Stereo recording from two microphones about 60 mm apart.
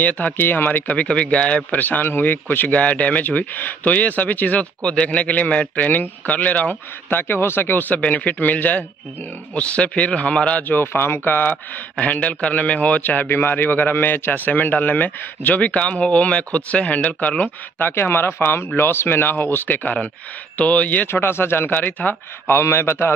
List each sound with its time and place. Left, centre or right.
0.0 s speech: left
8.0 s speech: left
10.7 s a man's voice: left
17.7 s a man's voice: left
21.1 s a man's voice: left
22.6 s a man's voice: left